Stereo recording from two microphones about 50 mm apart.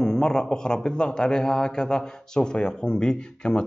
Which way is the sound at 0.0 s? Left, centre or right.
Centre.